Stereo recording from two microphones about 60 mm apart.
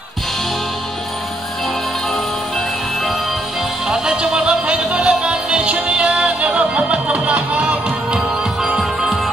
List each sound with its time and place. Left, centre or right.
3.8 s music: centre
8.7 s music: centre